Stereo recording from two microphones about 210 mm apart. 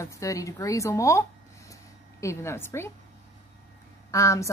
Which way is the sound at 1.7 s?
15° left (ahead or behind).